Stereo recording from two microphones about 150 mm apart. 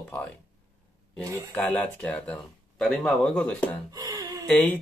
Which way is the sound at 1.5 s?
5° left (ahead or behind).